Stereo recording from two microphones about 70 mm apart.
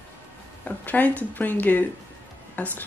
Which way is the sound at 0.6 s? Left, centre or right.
Left.